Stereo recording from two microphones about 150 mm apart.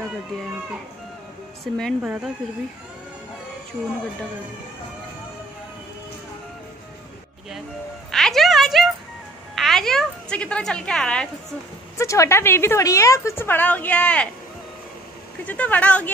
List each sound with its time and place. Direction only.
1.6 s speech: centre (ahead or behind)
2.0 s speech: 10° right (ahead or behind)
3.8 s speech: 15° right (ahead or behind)
8.1 s a sound: centre (ahead or behind)
9.6 s a woman's voice: centre (ahead or behind)
12.0 s a woman's voice: 20° left (ahead or behind)
15.4 s a woman's voice: 10° left (ahead or behind)